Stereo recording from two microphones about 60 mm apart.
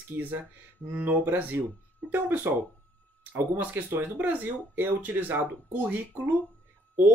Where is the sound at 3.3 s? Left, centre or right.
Right.